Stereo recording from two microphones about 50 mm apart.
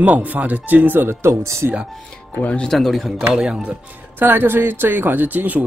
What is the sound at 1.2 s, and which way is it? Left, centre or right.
Speech, right.